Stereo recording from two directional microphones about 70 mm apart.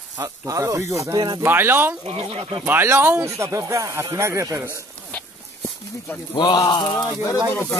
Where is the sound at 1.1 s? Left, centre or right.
Right.